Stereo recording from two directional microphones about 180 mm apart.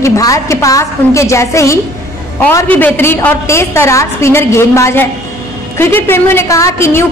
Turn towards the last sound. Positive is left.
turn(degrees=15)  # may be behind; listen again after turning